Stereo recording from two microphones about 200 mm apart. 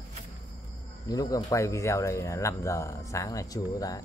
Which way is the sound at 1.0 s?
20° left (ahead or behind).